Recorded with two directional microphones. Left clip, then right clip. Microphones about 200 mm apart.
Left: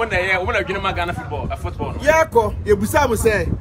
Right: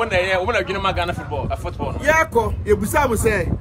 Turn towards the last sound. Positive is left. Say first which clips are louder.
# left 2 dB
turn(degrees=0)  # may be behind; listen again after turning